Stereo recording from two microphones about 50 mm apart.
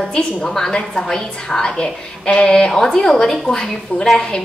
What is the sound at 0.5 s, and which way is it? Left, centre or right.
A woman's voice, centre.